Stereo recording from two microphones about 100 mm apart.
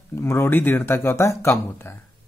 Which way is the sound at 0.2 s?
25° left (ahead or behind).